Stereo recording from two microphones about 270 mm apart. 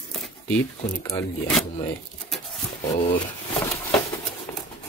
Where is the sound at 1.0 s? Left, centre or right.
Centre.